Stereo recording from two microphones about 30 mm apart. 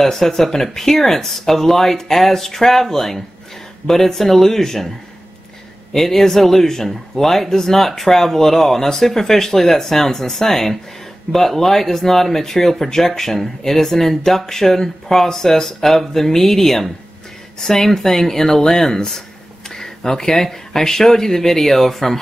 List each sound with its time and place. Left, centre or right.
0.0 s speech: centre
5.9 s speech: centre